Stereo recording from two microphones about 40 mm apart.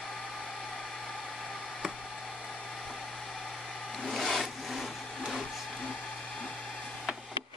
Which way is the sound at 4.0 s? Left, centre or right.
Centre.